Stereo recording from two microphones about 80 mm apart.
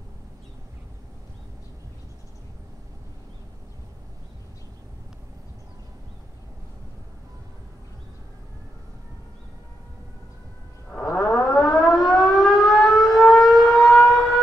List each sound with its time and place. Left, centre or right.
10.9 s a sound: centre
11.3 s civil defense siren: left
11.7 s civil defense siren: centre